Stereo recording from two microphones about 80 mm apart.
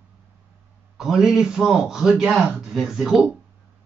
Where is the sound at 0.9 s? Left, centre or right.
Centre.